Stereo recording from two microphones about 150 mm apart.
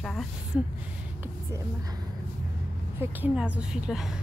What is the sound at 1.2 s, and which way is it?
Speech, 20° right (ahead or behind).